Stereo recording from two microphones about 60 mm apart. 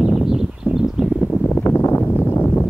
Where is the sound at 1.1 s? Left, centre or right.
Centre.